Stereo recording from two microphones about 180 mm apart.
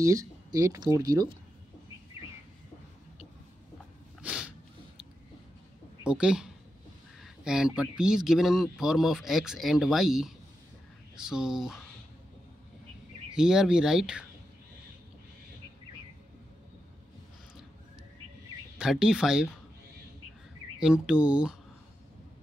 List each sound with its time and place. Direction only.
0.0 s speech: 20° right (ahead or behind)
4.2 s a sound: 5° right (ahead or behind)
6.0 s speech: 5° right (ahead or behind)
13.3 s speech: 5° right (ahead or behind)
18.8 s speech: 5° right (ahead or behind)
20.8 s speech: 5° right (ahead or behind)